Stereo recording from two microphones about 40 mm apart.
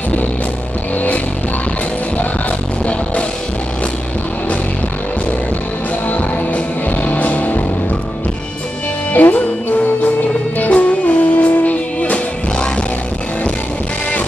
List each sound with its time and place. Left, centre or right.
6.0 s music: left
9.1 s music: left